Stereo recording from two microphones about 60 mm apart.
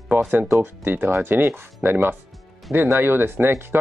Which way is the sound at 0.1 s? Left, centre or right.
Right.